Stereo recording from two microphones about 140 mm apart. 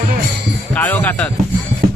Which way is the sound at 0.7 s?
10° left (ahead or behind).